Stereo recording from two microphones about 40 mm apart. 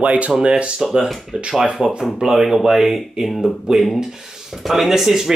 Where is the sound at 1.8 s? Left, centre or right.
Centre.